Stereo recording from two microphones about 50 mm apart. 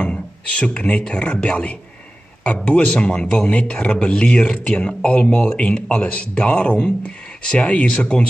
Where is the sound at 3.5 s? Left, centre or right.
Left.